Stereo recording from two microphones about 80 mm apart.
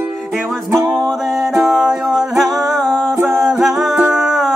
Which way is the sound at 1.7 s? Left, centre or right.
Centre.